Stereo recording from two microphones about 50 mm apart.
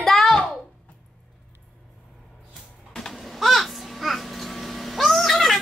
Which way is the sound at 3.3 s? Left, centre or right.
Centre.